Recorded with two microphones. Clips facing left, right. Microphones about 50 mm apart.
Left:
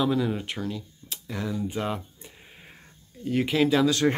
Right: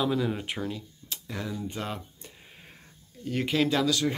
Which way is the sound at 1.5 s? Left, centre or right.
Centre.